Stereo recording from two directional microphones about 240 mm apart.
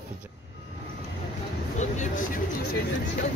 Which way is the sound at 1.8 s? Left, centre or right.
Left.